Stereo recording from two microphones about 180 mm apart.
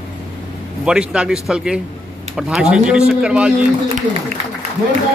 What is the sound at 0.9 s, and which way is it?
Speech, 5° right (ahead or behind).